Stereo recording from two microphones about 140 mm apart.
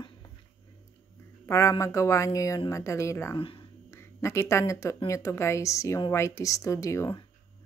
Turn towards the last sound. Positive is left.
turn(degrees=20)  # may be behind; listen again after turning